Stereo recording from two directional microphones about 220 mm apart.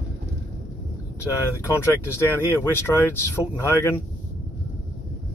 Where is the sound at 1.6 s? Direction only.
10° left (ahead or behind).